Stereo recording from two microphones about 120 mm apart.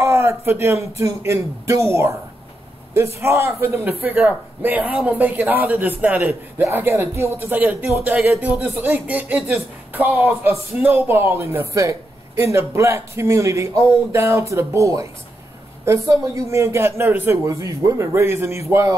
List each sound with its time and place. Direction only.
0.0 s a sound: 20° right (ahead or behind)
0.9 s a man's voice: 25° right (ahead or behind)
3.2 s a man's voice: 20° right (ahead or behind)